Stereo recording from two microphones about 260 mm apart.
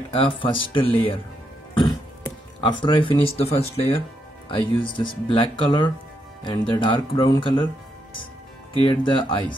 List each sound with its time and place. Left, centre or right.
0.1 s speech: centre
8.7 s speech: centre